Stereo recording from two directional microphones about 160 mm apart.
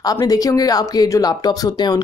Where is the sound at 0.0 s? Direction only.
25° left (ahead or behind).